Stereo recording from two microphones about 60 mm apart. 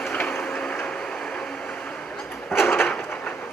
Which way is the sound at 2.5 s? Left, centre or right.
Left.